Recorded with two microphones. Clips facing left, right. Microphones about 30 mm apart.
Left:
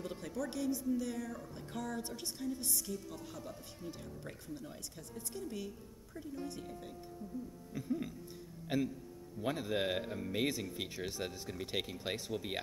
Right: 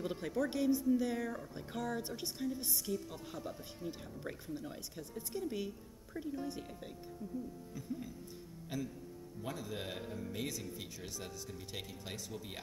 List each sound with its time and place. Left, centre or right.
0.0 s speech: centre
7.7 s music: left
8.6 s a man's voice: left